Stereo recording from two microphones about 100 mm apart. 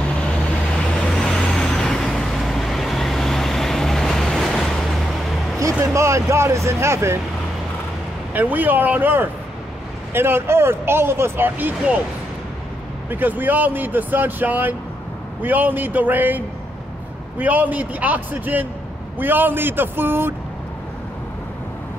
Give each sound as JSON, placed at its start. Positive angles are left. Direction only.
{"t": 0.7, "sound": "vehicle", "side_deg": 10}
{"t": 5.6, "sound": "speech", "side_deg": -30}
{"t": 8.3, "sound": "a man's voice", "side_deg": -15}
{"t": 13.1, "sound": "a man's voice", "side_deg": -20}